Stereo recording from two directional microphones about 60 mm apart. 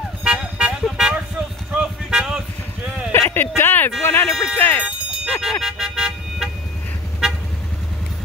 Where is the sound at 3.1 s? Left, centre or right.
Left.